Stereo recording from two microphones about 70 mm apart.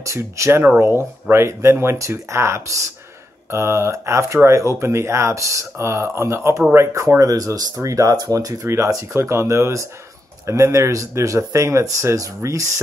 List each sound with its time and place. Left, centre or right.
0.0 s speech: right
8.6 s speech: right